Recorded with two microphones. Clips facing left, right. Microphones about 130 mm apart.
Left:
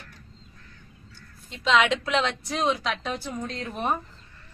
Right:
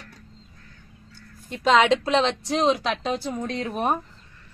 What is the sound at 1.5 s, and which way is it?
A woman's voice, 45° right (ahead or behind).